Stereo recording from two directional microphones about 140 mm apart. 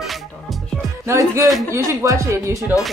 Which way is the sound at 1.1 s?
20° right (ahead or behind).